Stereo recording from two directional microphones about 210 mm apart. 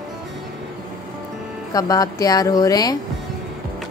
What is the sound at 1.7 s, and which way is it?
A woman's voice, 15° left (ahead or behind).